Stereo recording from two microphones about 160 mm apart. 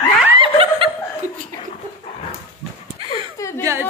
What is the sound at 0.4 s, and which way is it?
Snicker, 35° right (ahead or behind).